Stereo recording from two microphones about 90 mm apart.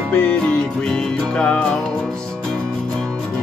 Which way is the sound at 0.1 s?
15° left (ahead or behind).